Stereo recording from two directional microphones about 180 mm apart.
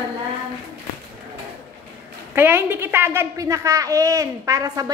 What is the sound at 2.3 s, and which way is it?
A woman's voice, 10° right (ahead or behind).